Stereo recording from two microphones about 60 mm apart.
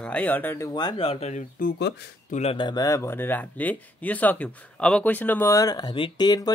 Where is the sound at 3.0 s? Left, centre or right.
Left; by 5.1 s centre.